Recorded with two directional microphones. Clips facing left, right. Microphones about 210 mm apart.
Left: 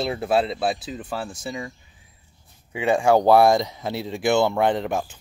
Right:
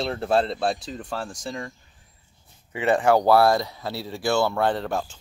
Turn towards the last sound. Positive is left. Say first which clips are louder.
# left 2 dB
turn(degrees=15)  # may be behind; listen again after turning